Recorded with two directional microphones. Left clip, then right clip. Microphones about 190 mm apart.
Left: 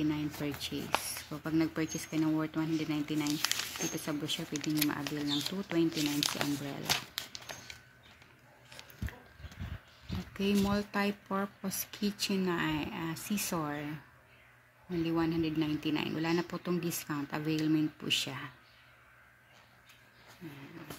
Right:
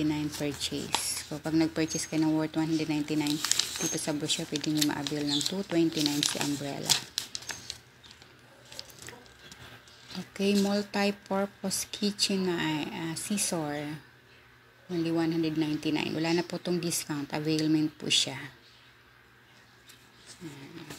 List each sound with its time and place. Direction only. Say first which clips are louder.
0.0 s speech: right 4 dB; 10° left (ahead or behind)
10.3 s speech: right 4 dB; 15° left (ahead or behind)
15.0 s speech: right 3 dB; 15° left (ahead or behind)